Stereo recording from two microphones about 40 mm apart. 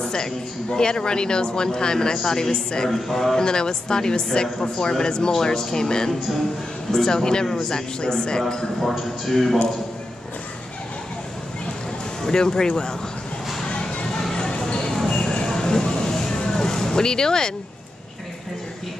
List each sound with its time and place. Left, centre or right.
0.0 s a man's voice: centre
3.3 s speech: centre
8.8 s a man's voice: centre
12.2 s speech: centre
13.7 s music: left
15.0 s a sound: left